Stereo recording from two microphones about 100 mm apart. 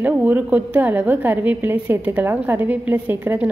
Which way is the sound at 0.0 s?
15° right (ahead or behind).